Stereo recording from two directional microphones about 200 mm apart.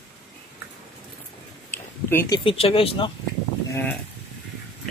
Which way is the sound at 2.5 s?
25° left (ahead or behind).